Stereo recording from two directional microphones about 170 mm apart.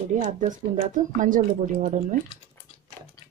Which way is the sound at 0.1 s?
45° right (ahead or behind).